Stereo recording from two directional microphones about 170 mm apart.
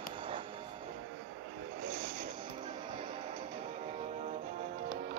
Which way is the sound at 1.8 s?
60° right (ahead or behind).